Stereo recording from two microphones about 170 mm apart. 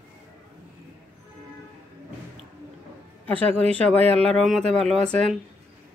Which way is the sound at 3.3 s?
35° right (ahead or behind).